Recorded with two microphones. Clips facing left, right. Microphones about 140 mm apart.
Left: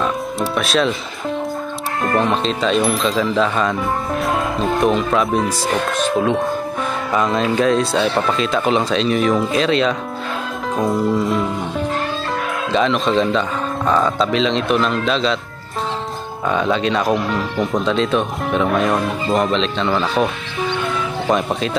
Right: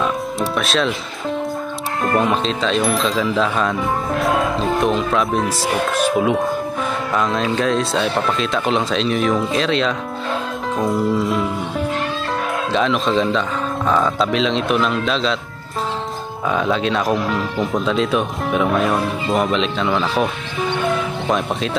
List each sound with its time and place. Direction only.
0.0 s music: centre (ahead or behind)
2.0 s speech: 5° right (ahead or behind)
12.7 s speech: centre (ahead or behind)
16.4 s speech: centre (ahead or behind)
21.3 s speech: centre (ahead or behind)